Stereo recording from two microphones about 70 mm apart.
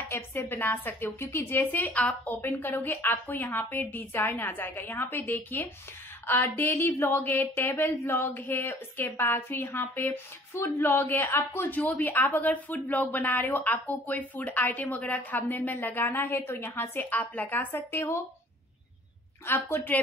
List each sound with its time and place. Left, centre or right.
0.1 s a woman's voice: left
19.4 s a woman's voice: left